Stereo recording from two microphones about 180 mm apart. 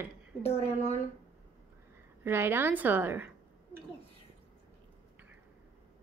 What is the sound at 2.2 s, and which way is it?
A woman's voice, 10° right (ahead or behind).